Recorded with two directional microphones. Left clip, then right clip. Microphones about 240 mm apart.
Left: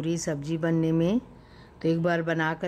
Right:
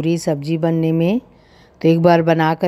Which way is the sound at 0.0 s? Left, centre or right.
Centre.